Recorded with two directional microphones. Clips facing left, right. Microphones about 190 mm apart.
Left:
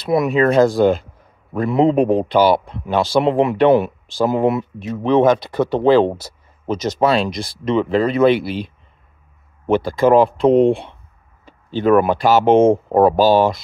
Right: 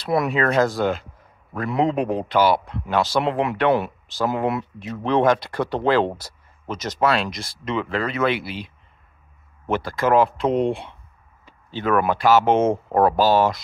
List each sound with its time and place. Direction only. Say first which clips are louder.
0.0 s speech: left 5 dB; 20° left (ahead or behind)
9.7 s speech: left 7 dB; 25° left (ahead or behind)